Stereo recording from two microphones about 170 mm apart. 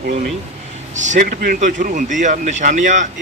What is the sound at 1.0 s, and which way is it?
Speech, 50° right (ahead or behind).